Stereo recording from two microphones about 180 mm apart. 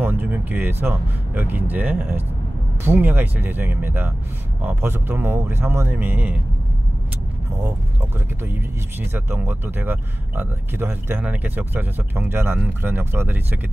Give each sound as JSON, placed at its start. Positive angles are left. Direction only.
{"t": 0.0, "sound": "speech", "side_deg": -10}
{"t": 9.1, "sound": "speech", "side_deg": -15}